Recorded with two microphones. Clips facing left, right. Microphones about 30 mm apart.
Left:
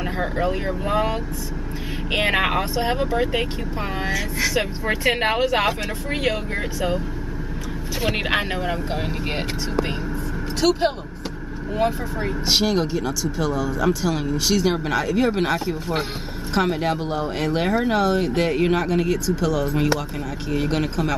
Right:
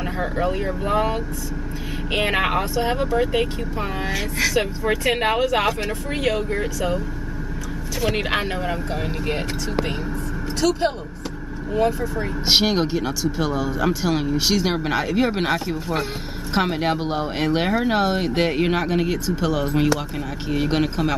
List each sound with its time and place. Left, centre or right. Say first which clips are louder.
0.0 s speech: even; centre
2.7 s speech: right 1 dB; centre
4.6 s speech: right 2 dB; centre
5.2 s speech: even; left
6.0 s speech: right 1 dB; centre
8.1 s speech: left 1 dB; centre
10.6 s speech: left 1 dB; centre
12.4 s speech: right 2 dB; right